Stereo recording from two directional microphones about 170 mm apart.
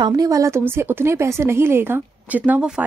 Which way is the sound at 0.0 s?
20° right (ahead or behind).